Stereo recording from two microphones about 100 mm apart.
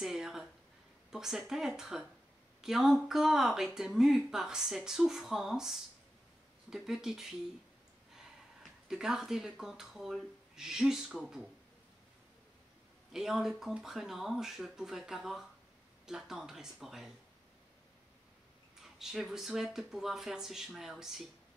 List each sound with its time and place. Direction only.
0.0 s a sound: 5° right (ahead or behind)
1.1 s speech: 5° right (ahead or behind)
8.8 s speech: 5° right (ahead or behind)
13.1 s speech: 5° right (ahead or behind)
18.8 s speech: 5° right (ahead or behind)